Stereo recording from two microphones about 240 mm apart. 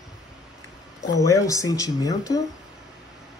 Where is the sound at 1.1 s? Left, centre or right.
Centre.